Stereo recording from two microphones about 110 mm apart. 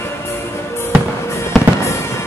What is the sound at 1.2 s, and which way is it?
Fireworks, 25° left (ahead or behind).